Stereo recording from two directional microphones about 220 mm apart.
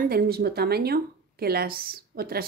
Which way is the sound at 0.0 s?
45° right (ahead or behind).